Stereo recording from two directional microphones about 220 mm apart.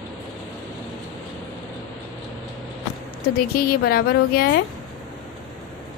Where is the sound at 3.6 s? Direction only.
45° left (ahead or behind).